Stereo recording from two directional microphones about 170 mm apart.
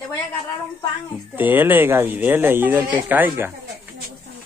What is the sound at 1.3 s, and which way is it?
Speech, 10° right (ahead or behind).